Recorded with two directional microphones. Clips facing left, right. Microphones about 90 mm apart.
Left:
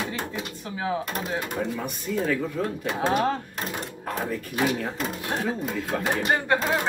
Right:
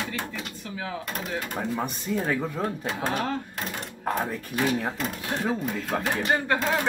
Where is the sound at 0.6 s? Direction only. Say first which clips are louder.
Left 7 dB; 25° left (ahead or behind).